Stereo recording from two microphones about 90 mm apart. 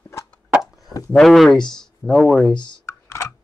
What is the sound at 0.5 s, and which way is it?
Chop, 5° right (ahead or behind).